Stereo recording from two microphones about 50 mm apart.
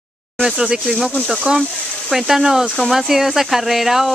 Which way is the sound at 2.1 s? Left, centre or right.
Centre.